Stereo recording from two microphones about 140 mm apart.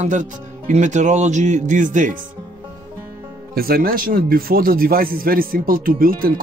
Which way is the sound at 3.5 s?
90° right.